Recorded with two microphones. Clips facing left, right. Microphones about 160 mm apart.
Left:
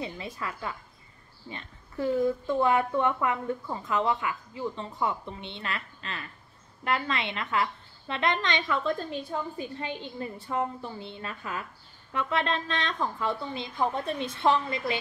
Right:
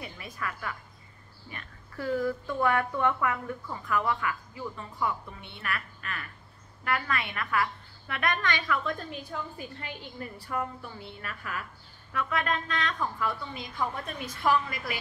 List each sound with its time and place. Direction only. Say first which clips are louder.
0.0 s a woman's voice: left 3 dB; 25° left (ahead or behind)